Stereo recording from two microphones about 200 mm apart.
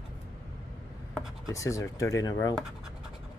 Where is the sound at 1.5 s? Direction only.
15° left (ahead or behind).